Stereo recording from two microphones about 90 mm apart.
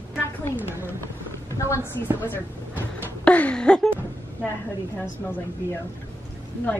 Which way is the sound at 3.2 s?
15° left (ahead or behind).